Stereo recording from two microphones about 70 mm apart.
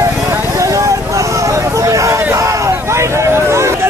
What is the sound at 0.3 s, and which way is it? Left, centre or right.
Vehicle, right.